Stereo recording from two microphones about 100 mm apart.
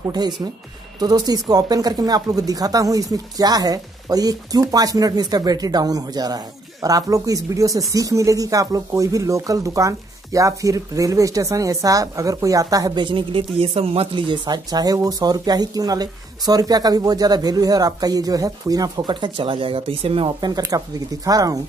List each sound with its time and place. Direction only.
0.9 s speech: 40° right (ahead or behind)
13.0 s speech: 60° right (ahead or behind); by 19.1 s 40° right (ahead or behind)
19.1 s speech: 55° right (ahead or behind)
20.2 s speech: 45° right (ahead or behind)